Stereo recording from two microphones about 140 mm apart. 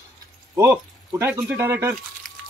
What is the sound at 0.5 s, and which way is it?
Speech, 25° right (ahead or behind).